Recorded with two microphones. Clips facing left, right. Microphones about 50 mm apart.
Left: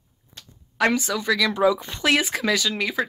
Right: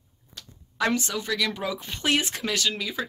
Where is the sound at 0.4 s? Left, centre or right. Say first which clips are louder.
Right 1 dB; left.